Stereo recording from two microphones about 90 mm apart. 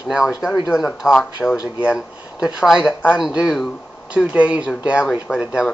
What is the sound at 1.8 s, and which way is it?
A woman's voice, 10° right (ahead or behind).